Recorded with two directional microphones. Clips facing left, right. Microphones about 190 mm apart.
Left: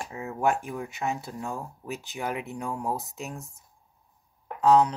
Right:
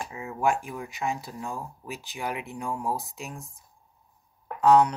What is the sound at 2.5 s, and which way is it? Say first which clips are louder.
Speech: even; 40° left (ahead or behind).